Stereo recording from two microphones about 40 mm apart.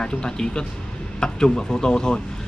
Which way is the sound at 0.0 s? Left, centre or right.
Left.